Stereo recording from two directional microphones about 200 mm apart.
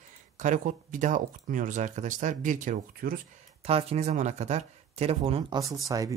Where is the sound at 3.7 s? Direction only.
30° right (ahead or behind).